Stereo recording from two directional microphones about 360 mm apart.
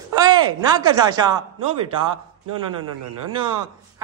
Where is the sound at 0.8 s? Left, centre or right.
Centre.